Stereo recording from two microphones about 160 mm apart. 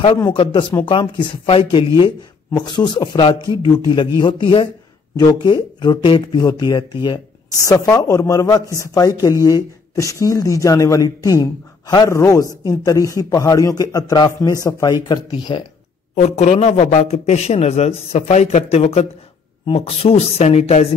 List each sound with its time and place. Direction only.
0.3 s speech: 35° left (ahead or behind)
16.2 s a man's voice: 45° left (ahead or behind)